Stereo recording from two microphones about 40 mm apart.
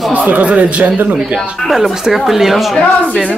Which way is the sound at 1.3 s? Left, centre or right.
Centre.